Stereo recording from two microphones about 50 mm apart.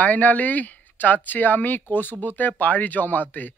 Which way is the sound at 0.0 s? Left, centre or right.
Left.